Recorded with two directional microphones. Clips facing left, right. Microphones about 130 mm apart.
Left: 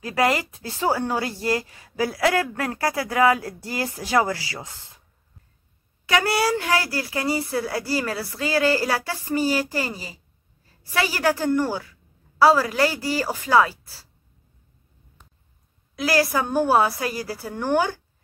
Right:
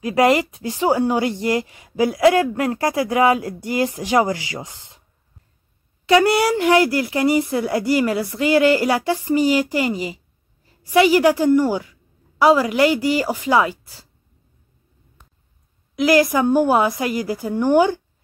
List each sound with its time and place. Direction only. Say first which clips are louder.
0.0 s speech: right 6 dB; 20° right (ahead or behind)
6.4 s a woman's voice: right 7 dB; 20° right (ahead or behind)
16.0 s a woman's voice: right 6 dB; 15° right (ahead or behind)